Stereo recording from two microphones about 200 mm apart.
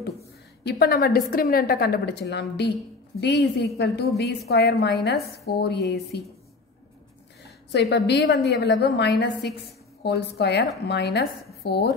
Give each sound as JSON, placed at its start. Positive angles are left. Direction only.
{"t": 0.7, "sound": "a woman's voice", "side_deg": 50}
{"t": 7.7, "sound": "a woman's voice", "side_deg": 60}
{"t": 11.6, "sound": "dishes", "side_deg": 55}